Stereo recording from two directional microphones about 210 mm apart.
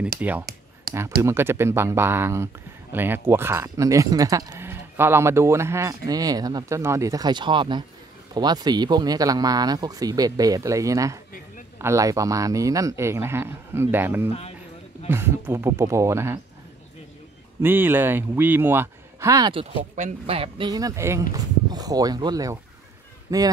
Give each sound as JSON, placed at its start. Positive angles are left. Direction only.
{"t": 0.2, "sound": "speech", "side_deg": -10}
{"t": 0.9, "sound": "a sound", "side_deg": -45}
{"t": 1.2, "sound": "speech", "side_deg": -10}
{"t": 17.6, "sound": "speech", "side_deg": -10}
{"t": 19.6, "sound": "speech", "side_deg": -30}